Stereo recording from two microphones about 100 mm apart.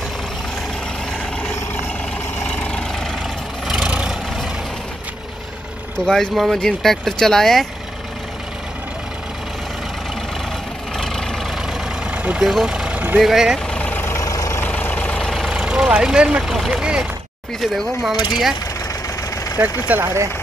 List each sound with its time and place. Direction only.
2.4 s vehicle: 10° left (ahead or behind)
3.6 s vehicle: 5° right (ahead or behind)
6.0 s speech: 5° left (ahead or behind)
11.0 s vehicle: 5° left (ahead or behind)
12.1 s vehicle: 15° right (ahead or behind)
13.2 s speech: 5° right (ahead or behind)
13.7 s vehicle: 10° left (ahead or behind)
14.0 s vehicle: 30° left (ahead or behind)
14.6 s vehicle: 15° left (ahead or behind)
15.2 s vehicle: centre (ahead or behind)
15.5 s speech: 10° right (ahead or behind)
18.1 s speech: 45° left (ahead or behind)
19.9 s speech: 25° right (ahead or behind)